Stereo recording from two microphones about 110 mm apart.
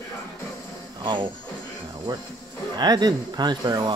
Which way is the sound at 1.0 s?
45° right (ahead or behind).